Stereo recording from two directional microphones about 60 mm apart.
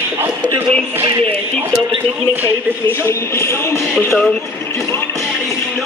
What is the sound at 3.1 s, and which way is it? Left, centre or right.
Speech, left.